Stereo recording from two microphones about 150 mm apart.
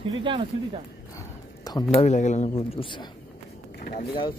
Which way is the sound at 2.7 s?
35° left (ahead or behind).